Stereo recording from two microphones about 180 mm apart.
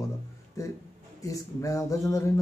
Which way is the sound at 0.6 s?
15° left (ahead or behind).